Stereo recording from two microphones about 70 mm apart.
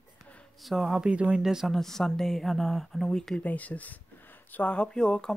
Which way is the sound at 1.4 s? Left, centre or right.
Centre.